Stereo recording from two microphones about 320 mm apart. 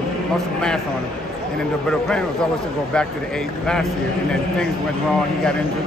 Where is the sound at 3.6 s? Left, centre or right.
Centre.